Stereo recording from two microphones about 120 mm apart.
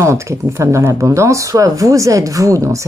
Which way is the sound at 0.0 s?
25° right (ahead or behind).